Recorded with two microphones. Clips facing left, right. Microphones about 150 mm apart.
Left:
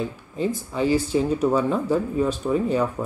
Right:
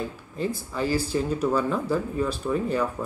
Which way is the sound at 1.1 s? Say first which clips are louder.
Left 4 dB; 15° left (ahead or behind).